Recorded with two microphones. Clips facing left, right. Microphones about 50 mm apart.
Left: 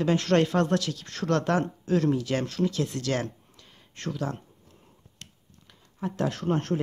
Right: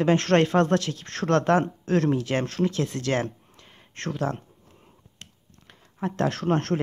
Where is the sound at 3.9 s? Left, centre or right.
Right.